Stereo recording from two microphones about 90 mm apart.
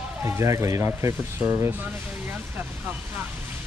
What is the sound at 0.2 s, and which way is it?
Speech, 35° right (ahead or behind).